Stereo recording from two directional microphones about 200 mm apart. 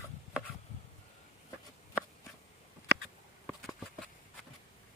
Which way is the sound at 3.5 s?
Centre (ahead or behind).